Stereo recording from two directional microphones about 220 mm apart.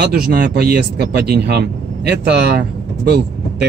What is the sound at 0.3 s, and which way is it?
Speech, 45° right (ahead or behind).